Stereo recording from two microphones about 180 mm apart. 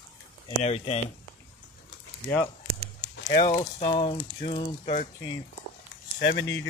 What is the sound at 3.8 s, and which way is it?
Speech, 30° left (ahead or behind).